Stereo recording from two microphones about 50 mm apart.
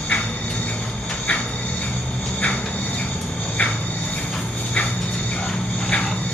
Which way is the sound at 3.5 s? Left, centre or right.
Left.